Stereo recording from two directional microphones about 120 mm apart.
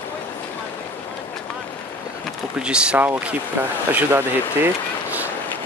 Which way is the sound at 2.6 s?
10° right (ahead or behind).